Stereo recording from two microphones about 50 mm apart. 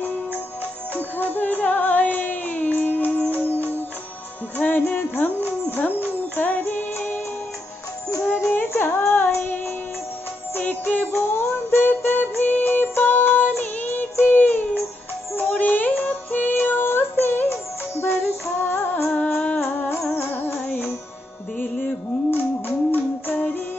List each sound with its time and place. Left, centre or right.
0.9 s music: left
8.5 s music: left
10.6 s music: left
11.1 s music: left
14.2 s child singing: left
17.5 s music: left
18.6 s music: left
19.1 s music: left
20.2 s music: left